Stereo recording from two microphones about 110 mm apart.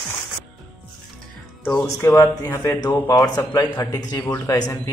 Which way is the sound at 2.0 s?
30° left (ahead or behind).